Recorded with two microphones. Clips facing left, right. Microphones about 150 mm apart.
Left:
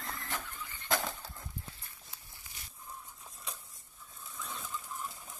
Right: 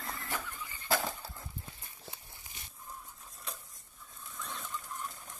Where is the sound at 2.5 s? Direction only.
20° right (ahead or behind).